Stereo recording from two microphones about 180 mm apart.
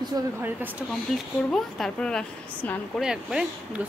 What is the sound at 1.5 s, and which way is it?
Speech, 5° left (ahead or behind).